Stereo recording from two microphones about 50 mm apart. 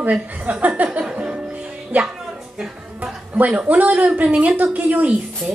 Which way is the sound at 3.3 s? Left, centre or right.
Right.